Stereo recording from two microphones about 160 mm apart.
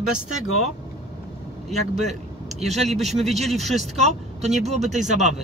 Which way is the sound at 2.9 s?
Centre (ahead or behind).